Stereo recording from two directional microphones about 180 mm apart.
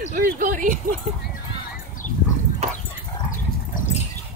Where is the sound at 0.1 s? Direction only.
50° right (ahead or behind).